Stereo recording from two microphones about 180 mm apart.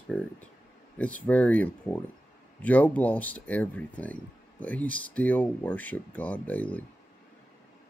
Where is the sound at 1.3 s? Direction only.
10° left (ahead or behind).